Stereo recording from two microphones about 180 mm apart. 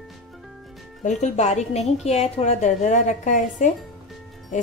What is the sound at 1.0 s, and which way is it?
Speech, 40° left (ahead or behind).